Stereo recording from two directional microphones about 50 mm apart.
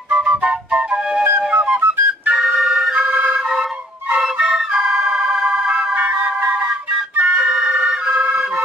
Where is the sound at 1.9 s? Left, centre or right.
Right.